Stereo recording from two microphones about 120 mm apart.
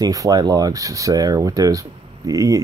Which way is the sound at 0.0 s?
30° right (ahead or behind).